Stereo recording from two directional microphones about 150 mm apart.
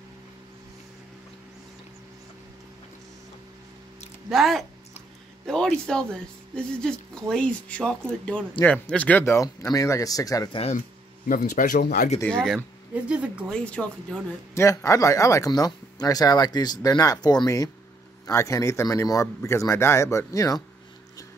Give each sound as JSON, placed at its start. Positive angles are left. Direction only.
{"t": 4.3, "sound": "speech", "side_deg": 0}
{"t": 11.2, "sound": "speech", "side_deg": 60}
{"t": 12.3, "sound": "speech", "side_deg": 5}
{"t": 12.9, "sound": "speech", "side_deg": -10}
{"t": 13.5, "sound": "speech", "side_deg": 5}
{"t": 14.5, "sound": "speech", "side_deg": 20}